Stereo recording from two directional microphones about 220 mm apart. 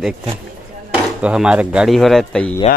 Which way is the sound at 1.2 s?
5° right (ahead or behind).